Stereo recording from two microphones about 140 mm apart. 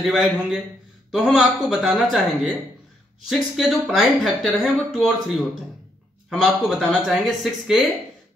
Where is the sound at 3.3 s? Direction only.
Centre (ahead or behind).